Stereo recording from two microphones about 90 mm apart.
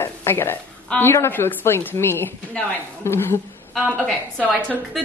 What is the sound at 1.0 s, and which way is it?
A woman's voice, 25° left (ahead or behind).